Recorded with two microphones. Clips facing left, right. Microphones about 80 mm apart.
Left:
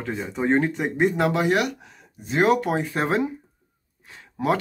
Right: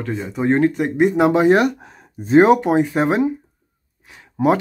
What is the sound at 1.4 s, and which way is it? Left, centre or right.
Speech, right.